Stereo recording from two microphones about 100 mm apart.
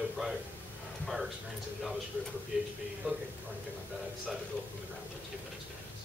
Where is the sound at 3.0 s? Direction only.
15° right (ahead or behind).